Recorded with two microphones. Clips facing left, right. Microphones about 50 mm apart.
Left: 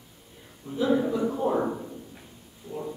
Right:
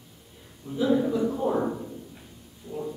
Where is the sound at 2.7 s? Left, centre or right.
Centre.